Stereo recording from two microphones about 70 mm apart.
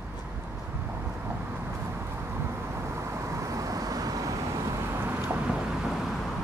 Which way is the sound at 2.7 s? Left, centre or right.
Right.